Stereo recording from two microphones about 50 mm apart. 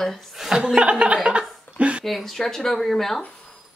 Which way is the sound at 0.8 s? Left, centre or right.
Right.